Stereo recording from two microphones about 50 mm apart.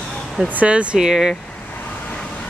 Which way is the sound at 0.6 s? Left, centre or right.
Right.